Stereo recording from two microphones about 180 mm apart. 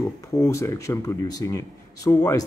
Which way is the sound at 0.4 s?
15° left (ahead or behind).